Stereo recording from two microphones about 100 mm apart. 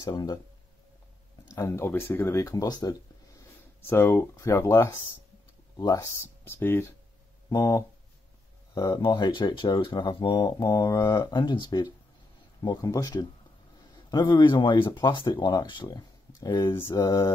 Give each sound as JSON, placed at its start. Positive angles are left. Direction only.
{"t": 0.0, "sound": "speech", "side_deg": 45}
{"t": 1.5, "sound": "speech", "side_deg": 30}
{"t": 3.8, "sound": "speech", "side_deg": 25}
{"t": 6.4, "sound": "speech", "side_deg": 25}
{"t": 12.8, "sound": "speech", "side_deg": 35}
{"t": 14.1, "sound": "speech", "side_deg": 50}